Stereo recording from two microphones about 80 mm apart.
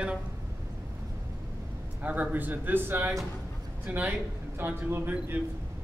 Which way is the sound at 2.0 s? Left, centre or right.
Centre.